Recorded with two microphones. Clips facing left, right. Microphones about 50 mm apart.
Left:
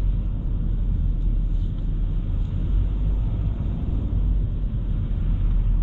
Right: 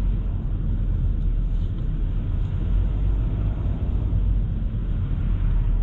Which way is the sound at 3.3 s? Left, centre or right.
Centre.